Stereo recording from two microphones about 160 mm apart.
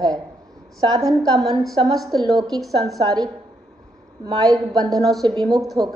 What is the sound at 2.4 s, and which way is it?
Speech, centre (ahead or behind).